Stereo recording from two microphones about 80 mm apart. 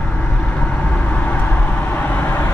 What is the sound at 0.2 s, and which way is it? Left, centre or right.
Vehicle, centre.